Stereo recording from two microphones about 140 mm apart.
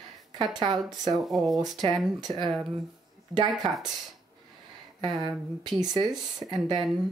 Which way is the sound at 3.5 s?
Centre (ahead or behind).